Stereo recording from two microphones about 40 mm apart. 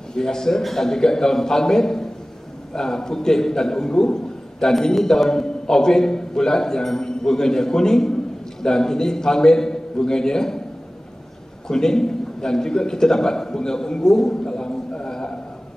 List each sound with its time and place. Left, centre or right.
0.1 s a man's voice: centre
11.6 s a man's voice: centre